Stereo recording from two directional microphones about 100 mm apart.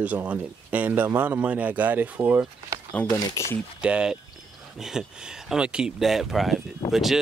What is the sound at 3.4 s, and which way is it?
Speech, 30° left (ahead or behind).